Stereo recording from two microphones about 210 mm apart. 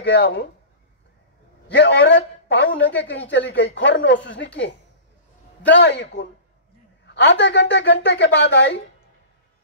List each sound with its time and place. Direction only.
0.0 s speech: 55° left (ahead or behind)
1.7 s a man's voice: 55° left (ahead or behind)
5.7 s speech: 55° left (ahead or behind)